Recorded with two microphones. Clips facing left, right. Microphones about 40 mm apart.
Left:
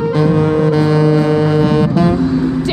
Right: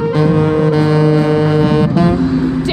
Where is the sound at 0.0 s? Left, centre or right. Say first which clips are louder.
Even; right.